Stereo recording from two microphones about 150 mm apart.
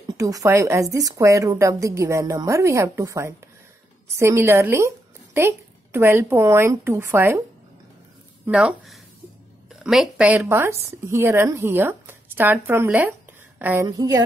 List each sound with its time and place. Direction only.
0.2 s a woman's voice: 20° right (ahead or behind)
8.5 s a woman's voice: 5° right (ahead or behind)
13.8 s a woman's voice: 25° right (ahead or behind)